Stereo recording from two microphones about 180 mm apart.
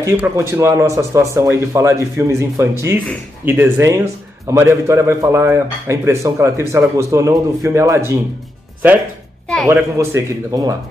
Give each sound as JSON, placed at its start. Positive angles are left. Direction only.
{"t": 0.0, "sound": "a man's voice", "side_deg": -15}
{"t": 9.7, "sound": "a man's voice", "side_deg": -15}